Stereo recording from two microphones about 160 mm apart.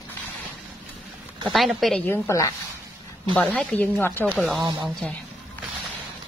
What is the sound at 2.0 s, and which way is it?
A woman's voice, 10° left (ahead or behind).